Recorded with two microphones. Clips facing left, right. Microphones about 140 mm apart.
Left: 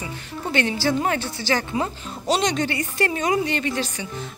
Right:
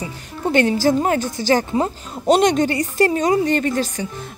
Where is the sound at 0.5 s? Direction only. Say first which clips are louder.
Right 6 dB; 45° right (ahead or behind).